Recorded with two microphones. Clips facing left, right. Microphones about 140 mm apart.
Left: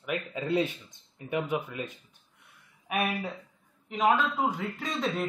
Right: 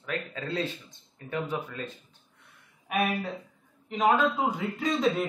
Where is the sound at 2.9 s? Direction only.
5° left (ahead or behind).